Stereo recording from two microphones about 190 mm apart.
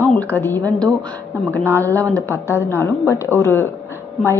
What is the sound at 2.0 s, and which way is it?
Speech, 15° right (ahead or behind).